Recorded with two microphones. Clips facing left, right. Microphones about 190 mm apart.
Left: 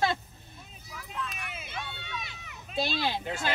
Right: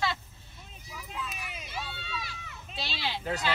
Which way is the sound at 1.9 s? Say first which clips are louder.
Right 1 dB; 20° left (ahead or behind).